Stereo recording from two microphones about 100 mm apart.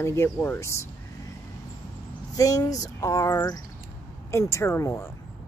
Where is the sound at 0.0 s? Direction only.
25° left (ahead or behind).